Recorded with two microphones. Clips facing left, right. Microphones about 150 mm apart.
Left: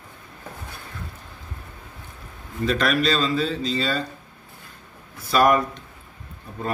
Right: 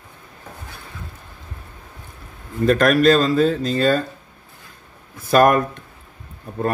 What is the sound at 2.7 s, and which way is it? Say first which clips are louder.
Speech: right 8 dB; 50° right (ahead or behind).